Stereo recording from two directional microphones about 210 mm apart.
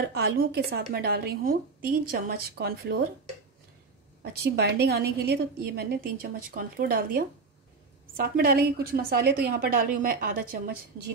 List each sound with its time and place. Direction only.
0.1 s a woman's voice: 50° right (ahead or behind)
4.2 s a woman's voice: 50° right (ahead or behind)